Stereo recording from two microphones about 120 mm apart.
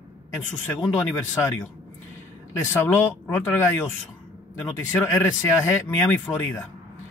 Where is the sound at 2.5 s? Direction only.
20° left (ahead or behind).